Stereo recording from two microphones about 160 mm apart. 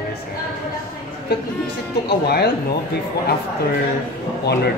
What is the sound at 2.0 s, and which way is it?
Speech, 85° left.